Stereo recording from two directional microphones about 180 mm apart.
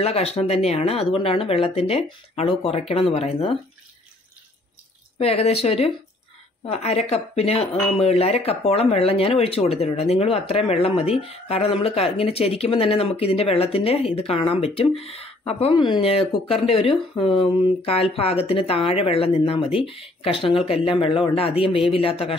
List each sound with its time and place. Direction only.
0.0 s speech: 35° left (ahead or behind)
5.2 s speech: 35° left (ahead or behind)